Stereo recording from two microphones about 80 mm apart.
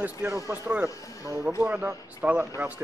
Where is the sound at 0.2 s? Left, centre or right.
Right.